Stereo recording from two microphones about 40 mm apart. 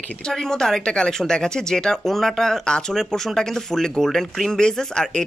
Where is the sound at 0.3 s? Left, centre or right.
Centre.